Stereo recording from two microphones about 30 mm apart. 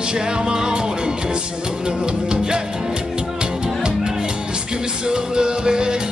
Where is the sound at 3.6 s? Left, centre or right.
Right.